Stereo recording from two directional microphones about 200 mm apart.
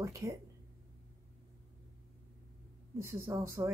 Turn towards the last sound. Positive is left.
turn(degrees=-15)  # may be behind; listen again after turning